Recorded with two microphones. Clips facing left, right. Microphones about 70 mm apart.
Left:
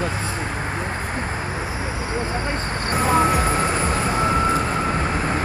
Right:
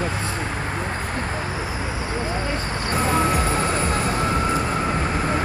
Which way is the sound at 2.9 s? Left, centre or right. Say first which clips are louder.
Left 3 dB; centre.